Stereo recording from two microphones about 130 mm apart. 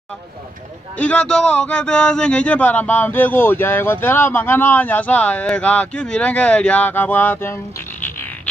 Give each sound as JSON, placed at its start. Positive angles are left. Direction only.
{"t": 0.9, "sound": "a man's voice", "side_deg": 10}